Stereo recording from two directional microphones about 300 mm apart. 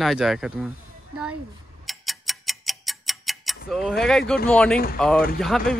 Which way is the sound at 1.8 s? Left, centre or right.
Centre.